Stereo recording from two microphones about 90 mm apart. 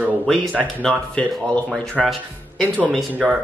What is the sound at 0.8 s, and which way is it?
Speech, 10° left (ahead or behind).